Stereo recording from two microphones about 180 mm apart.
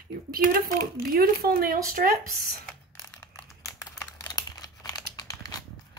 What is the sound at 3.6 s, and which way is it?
Computer keyboard, 20° left (ahead or behind).